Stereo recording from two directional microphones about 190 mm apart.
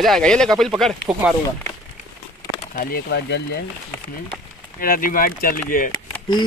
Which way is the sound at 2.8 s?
55° left (ahead or behind).